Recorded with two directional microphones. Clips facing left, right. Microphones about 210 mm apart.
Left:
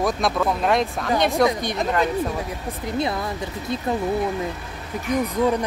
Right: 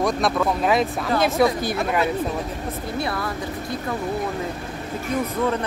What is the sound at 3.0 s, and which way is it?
Speech, 20° left (ahead or behind).